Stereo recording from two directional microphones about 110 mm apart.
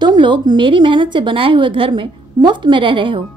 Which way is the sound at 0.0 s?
45° right (ahead or behind).